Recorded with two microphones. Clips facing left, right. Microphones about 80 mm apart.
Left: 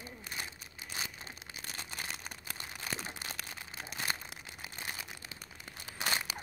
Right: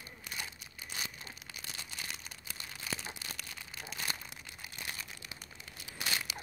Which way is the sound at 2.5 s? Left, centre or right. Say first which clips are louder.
Left 1 dB; left.